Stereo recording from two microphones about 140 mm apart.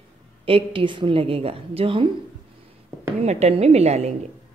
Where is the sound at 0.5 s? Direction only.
40° right (ahead or behind).